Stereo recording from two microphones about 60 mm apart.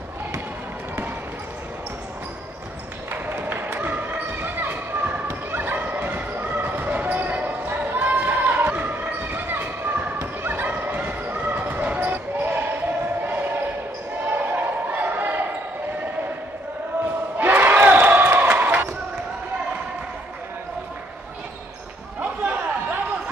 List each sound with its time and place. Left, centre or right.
3.1 s basketball bounce: right
14.3 s a sound: right
17.4 s basketball bounce: right
22.2 s chatter: right